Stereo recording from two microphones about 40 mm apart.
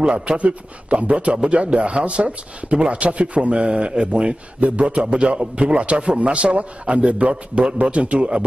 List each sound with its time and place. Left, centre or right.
0.0 s speech: right